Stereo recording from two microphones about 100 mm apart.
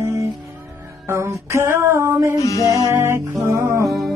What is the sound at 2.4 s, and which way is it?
Music, 35° left (ahead or behind).